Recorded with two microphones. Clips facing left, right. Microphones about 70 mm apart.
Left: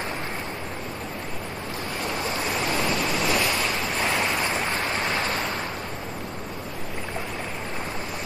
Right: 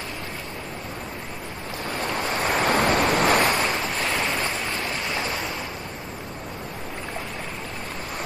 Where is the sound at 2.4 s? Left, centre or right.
Right.